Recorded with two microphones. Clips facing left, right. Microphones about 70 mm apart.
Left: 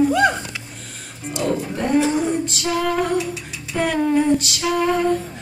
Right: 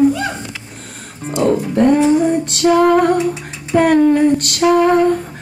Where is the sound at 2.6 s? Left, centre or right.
Right.